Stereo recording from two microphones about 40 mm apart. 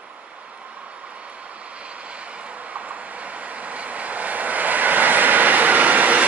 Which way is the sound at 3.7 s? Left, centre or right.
Right.